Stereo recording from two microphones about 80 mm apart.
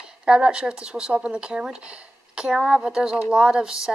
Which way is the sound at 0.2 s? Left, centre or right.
Centre.